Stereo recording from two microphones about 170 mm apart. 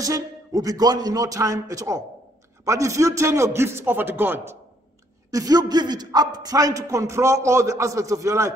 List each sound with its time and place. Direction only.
0.0 s a man's voice: 20° right (ahead or behind)